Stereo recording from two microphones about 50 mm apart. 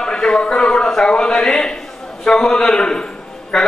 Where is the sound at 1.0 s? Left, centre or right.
Centre.